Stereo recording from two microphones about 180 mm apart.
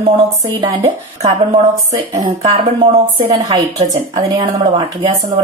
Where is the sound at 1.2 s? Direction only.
35° right (ahead or behind).